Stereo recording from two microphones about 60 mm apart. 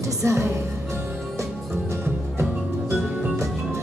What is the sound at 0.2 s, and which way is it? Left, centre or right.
Music, right.